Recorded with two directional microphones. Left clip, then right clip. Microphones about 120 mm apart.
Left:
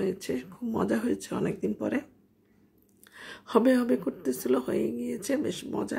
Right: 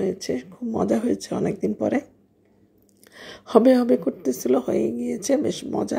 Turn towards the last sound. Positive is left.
turn(degrees=-25)  # may be behind; listen again after turning